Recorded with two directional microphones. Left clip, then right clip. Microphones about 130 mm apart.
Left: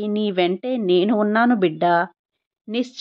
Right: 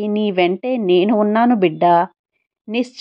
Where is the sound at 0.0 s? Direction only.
15° right (ahead or behind).